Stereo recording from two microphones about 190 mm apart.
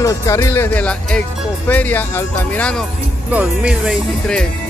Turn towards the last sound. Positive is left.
turn(degrees=0)  # may be behind; listen again after turning